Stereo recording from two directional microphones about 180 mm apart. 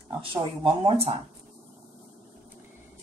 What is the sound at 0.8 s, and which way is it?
Speech, 30° right (ahead or behind).